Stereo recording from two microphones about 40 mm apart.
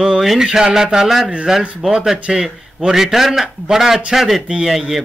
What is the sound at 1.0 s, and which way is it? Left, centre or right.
A man's voice, centre.